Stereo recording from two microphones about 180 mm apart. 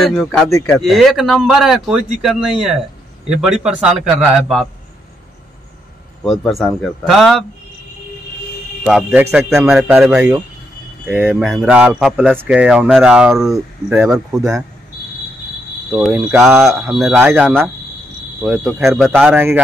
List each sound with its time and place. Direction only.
0.0 s speech: centre (ahead or behind)
6.2 s speech: centre (ahead or behind)
8.8 s speech: 5° right (ahead or behind)
16.0 s speech: 5° right (ahead or behind)
19.2 s speech: 10° right (ahead or behind)